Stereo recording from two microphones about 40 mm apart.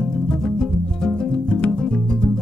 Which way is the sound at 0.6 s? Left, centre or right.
Centre.